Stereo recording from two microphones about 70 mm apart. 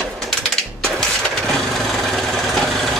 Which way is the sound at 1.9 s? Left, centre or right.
Centre.